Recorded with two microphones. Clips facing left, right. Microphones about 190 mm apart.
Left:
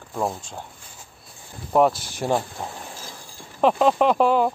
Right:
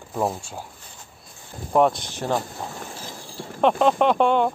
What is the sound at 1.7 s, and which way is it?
Speech, 5° left (ahead or behind).